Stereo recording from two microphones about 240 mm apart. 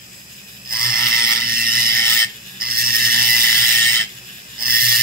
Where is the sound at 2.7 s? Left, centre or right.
Right.